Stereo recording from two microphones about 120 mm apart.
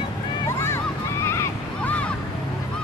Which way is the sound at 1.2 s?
20° left (ahead or behind).